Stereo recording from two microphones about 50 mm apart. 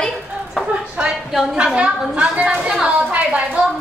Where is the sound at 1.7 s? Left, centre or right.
Right.